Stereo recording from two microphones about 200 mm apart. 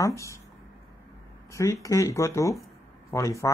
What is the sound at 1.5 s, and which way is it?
Speech, 15° left (ahead or behind).